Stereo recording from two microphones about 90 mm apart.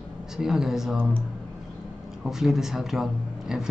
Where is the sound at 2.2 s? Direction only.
5° right (ahead or behind).